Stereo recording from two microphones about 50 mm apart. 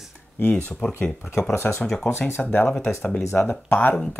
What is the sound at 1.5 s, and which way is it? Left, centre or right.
Speech, left.